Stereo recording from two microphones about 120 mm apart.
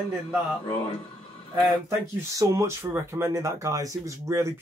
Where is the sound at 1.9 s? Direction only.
25° right (ahead or behind).